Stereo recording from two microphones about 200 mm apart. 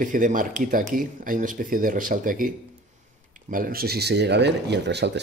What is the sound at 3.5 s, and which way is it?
Speech, 45° right (ahead or behind).